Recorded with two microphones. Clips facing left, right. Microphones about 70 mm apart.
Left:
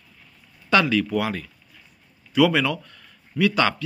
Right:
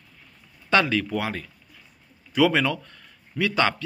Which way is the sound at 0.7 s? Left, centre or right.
Right.